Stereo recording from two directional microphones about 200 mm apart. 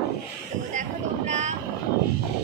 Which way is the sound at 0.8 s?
35° right (ahead or behind).